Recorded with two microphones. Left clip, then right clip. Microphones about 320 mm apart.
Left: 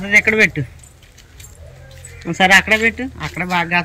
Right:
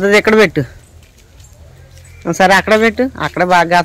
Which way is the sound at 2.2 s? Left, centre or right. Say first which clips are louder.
Right 2 dB; centre.